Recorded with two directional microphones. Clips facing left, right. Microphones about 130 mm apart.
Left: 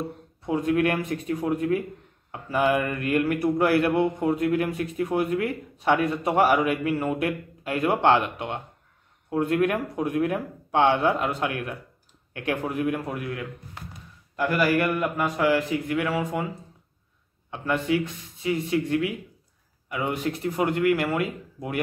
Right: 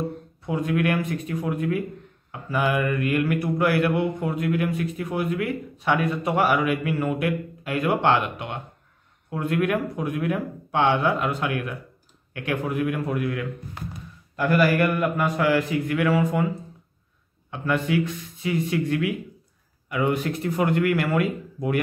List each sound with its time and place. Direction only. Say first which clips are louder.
0.5 s a man's voice: left 1 dB; 35° left (ahead or behind); by 16.4 s 20° left (ahead or behind)
17.5 s a man's voice: even; 30° left (ahead or behind)